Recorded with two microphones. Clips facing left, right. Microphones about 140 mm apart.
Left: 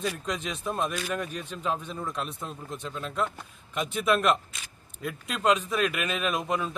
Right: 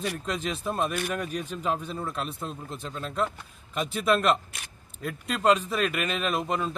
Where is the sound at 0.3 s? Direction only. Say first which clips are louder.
Right 2 dB; centre (ahead or behind).